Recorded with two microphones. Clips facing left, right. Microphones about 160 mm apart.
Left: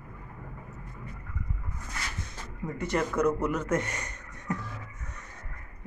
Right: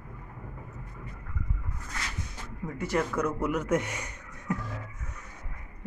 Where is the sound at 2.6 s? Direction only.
5° right (ahead or behind).